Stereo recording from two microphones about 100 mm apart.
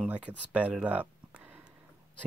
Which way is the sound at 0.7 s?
15° right (ahead or behind).